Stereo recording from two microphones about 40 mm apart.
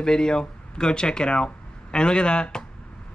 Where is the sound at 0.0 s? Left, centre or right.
Centre.